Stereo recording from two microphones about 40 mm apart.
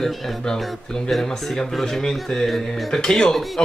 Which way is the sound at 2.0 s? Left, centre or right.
Centre.